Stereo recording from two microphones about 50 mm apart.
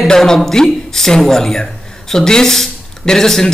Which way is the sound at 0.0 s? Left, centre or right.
Centre.